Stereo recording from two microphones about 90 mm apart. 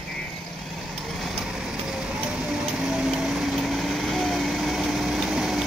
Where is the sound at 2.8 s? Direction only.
5° right (ahead or behind).